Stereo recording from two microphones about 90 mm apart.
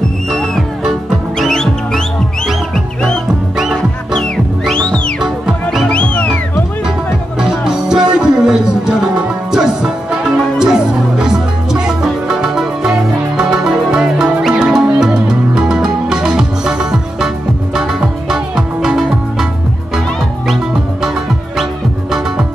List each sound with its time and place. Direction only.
1.4 s music: 5° left (ahead or behind)
4.2 s music: 10° left (ahead or behind)
5.2 s music: 5° right (ahead or behind)
5.9 s music: 15° left (ahead or behind)
7.3 s music: 5° right (ahead or behind)
18.3 s music: 5° right (ahead or behind)